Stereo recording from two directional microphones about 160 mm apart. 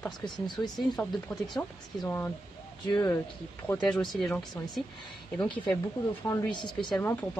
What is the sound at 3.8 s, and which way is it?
Speech, 5° left (ahead or behind).